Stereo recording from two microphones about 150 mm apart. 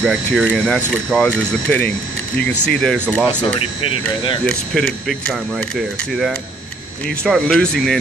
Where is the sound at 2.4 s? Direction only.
10° left (ahead or behind).